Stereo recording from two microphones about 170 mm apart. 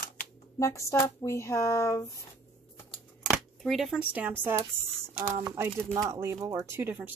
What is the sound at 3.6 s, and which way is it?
A woman's voice, centre (ahead or behind).